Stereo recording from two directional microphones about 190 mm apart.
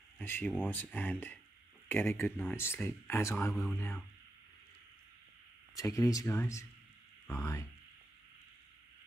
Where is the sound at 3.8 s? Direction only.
10° left (ahead or behind).